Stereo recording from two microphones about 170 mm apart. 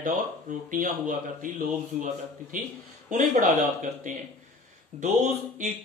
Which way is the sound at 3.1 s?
50° right (ahead or behind).